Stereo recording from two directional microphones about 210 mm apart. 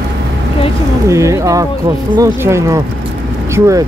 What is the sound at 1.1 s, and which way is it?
Speech, 15° right (ahead or behind).